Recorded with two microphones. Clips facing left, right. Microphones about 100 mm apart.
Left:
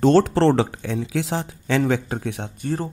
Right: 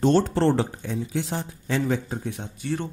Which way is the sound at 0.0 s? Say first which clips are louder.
Left 4 dB; 90° left.